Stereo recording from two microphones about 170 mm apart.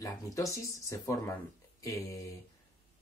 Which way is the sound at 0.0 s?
20° left (ahead or behind).